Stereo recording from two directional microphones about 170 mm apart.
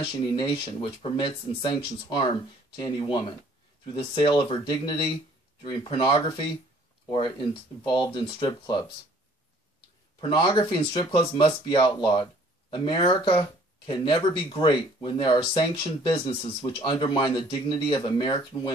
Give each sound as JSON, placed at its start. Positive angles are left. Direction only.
{"t": 0.0, "sound": "speech", "side_deg": 30}
{"t": 10.2, "sound": "speech", "side_deg": 25}